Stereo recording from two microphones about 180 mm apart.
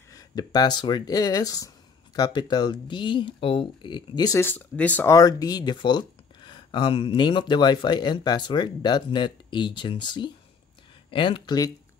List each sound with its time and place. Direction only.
0.1 s speech: 20° left (ahead or behind)